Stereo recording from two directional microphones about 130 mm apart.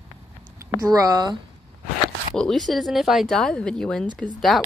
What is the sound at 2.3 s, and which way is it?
Speech, 5° left (ahead or behind).